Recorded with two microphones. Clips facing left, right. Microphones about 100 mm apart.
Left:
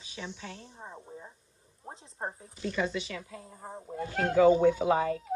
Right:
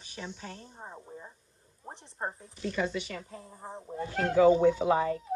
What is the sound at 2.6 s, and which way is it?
Speech, 50° right (ahead or behind).